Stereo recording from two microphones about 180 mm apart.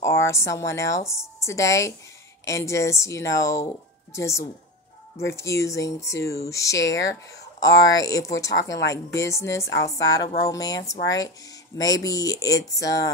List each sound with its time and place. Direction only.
0.3 s speech: 15° left (ahead or behind)